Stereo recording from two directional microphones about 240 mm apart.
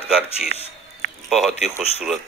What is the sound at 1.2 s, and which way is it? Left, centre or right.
Speech, centre.